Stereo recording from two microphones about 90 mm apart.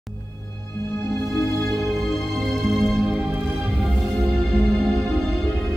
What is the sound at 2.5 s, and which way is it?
Music, centre (ahead or behind).